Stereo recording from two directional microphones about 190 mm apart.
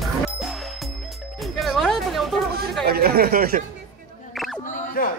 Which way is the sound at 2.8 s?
55° right (ahead or behind).